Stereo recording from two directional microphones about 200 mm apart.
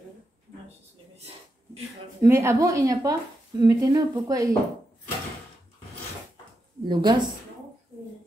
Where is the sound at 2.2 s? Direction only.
15° right (ahead or behind).